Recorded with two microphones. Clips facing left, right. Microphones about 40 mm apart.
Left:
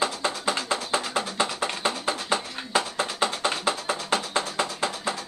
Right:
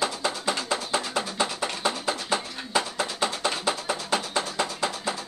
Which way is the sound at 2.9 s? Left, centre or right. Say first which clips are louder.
Left 1 dB; left.